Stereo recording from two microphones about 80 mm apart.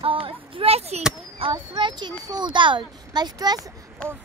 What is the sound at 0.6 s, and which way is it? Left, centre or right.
Speech, right.